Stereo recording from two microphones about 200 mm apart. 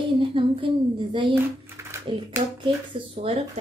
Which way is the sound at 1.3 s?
15° right (ahead or behind).